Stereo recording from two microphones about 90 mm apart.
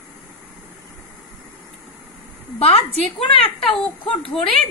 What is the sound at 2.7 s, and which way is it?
A woman's voice, 80° left.